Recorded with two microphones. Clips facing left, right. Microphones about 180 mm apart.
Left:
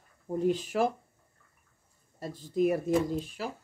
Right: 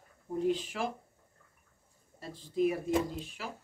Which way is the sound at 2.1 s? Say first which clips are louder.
Left 3 dB; 45° left (ahead or behind).